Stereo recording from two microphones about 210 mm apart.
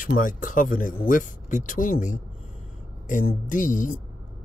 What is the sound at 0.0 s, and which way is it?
Speech, 40° left (ahead or behind).